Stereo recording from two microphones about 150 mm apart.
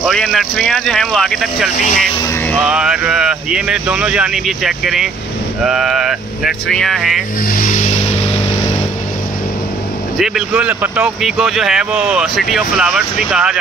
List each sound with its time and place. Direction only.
0.0 s speech: centre (ahead or behind)
7.4 s a sound: 65° left (ahead or behind); by 8.4 s 45° left (ahead or behind)
10.1 s speech: 5° right (ahead or behind)